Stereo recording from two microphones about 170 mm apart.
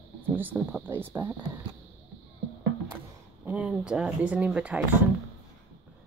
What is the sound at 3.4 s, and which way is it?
Speech, 5° right (ahead or behind).